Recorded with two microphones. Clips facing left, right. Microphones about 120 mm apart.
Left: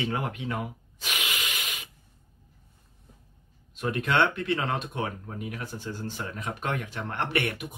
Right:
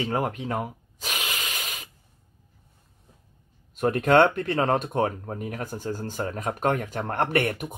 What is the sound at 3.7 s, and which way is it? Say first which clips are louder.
Speech: right 7 dB; 45° right (ahead or behind).